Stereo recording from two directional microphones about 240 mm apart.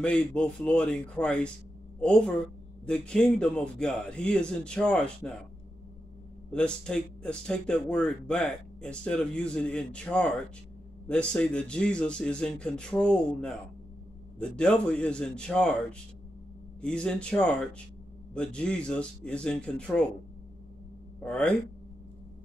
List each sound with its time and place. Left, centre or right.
0.0 s speech: centre
6.5 s speech: centre
21.2 s speech: centre